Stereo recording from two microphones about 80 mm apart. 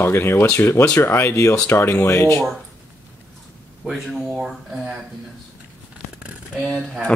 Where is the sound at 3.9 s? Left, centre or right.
Centre.